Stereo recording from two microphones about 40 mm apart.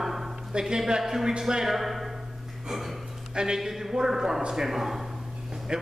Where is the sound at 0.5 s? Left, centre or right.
Centre.